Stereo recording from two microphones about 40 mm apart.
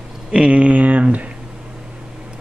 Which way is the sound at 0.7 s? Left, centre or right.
Right.